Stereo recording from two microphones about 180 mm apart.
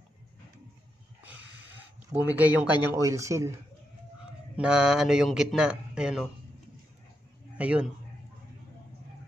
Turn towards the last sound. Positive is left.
turn(degrees=-5)  # may be behind; listen again after turning